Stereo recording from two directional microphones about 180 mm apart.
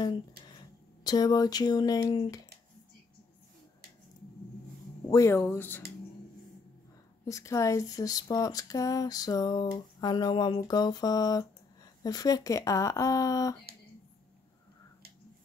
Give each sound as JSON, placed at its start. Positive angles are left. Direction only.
{"t": 1.0, "sound": "speech", "side_deg": 20}
{"t": 5.1, "sound": "speech", "side_deg": 15}
{"t": 7.2, "sound": "speech", "side_deg": 15}